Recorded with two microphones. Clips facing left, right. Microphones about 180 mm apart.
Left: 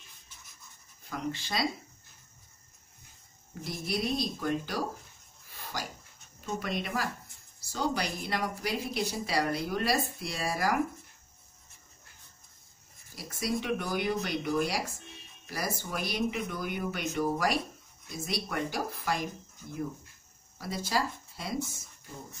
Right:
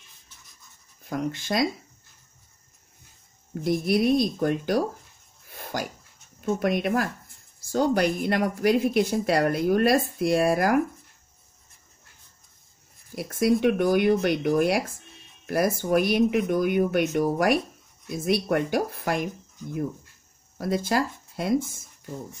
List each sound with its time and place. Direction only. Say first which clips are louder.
1.1 s speech: right 7 dB; 50° right (ahead or behind)
3.6 s speech: right 11 dB; 55° right (ahead or behind)
5.5 s a sound: right 7 dB; 50° right (ahead or behind)
6.4 s speech: right 10 dB; 55° right (ahead or behind)
13.1 s speech: right 11 dB; 55° right (ahead or behind)
18.1 s speech: right 11 dB; 55° right (ahead or behind)
20.5 s speech: right 7 dB; 55° right (ahead or behind)